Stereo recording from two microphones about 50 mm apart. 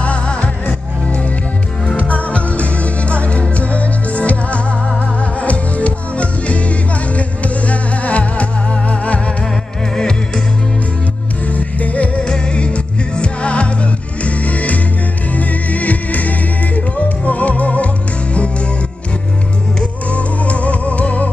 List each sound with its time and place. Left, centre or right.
0.0 s music: left
9.9 s music: centre
11.5 s music: left
20.1 s music: left